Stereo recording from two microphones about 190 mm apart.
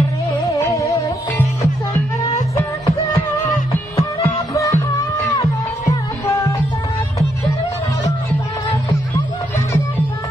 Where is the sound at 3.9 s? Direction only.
15° left (ahead or behind).